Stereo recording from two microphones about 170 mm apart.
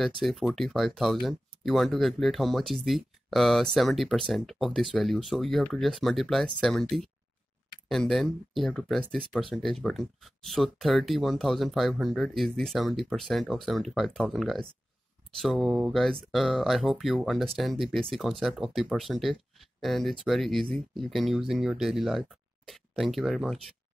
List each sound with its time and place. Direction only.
0.0 s speech: centre (ahead or behind)